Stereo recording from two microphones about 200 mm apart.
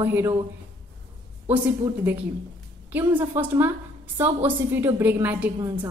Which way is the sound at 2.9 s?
10° right (ahead or behind).